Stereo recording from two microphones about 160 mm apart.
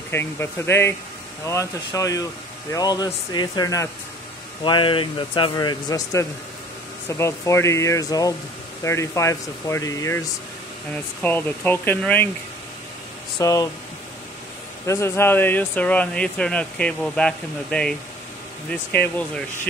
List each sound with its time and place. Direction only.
0.1 s speech: 15° left (ahead or behind)
4.6 s speech: 30° left (ahead or behind)
11.2 s speech: 10° left (ahead or behind)
13.4 s speech: 20° left (ahead or behind)
14.9 s speech: 15° left (ahead or behind)
19.1 s speech: 10° left (ahead or behind)